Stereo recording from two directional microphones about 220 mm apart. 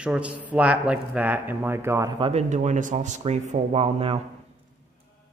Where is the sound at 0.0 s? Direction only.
5° right (ahead or behind); by 4.2 s 25° right (ahead or behind).